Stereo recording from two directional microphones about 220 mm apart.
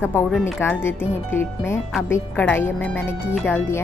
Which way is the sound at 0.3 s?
10° left (ahead or behind).